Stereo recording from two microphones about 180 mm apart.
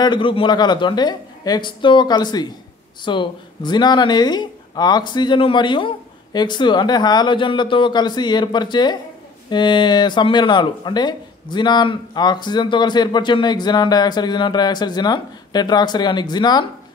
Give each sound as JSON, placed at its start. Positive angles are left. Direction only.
{"t": 0.0, "sound": "speech", "side_deg": 25}